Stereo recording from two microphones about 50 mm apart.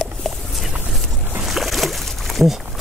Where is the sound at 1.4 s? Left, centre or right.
Centre.